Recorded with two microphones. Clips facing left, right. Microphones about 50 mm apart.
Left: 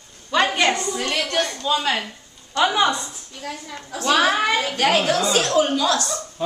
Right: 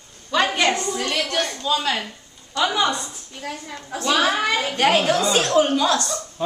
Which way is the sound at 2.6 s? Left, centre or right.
Left.